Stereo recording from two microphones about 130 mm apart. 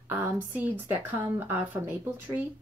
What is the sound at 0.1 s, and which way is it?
A woman's voice, 15° right (ahead or behind).